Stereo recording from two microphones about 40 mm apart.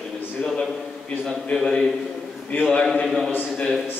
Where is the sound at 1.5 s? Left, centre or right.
Centre.